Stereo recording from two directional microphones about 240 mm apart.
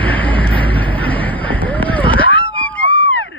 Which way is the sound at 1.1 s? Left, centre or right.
Centre.